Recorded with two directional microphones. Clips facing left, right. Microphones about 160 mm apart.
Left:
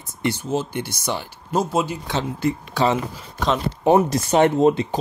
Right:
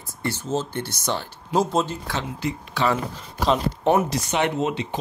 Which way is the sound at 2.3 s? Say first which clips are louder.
Left 5 dB; 50° left (ahead or behind).